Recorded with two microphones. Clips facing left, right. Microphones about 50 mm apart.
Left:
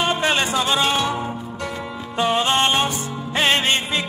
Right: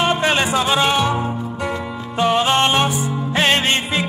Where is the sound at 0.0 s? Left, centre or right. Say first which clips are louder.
Right 3 dB; right.